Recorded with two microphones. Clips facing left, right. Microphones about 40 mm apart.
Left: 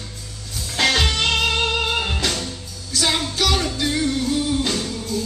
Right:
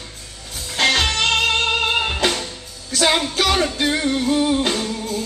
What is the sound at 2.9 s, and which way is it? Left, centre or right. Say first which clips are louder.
Music: right 4 dB; right.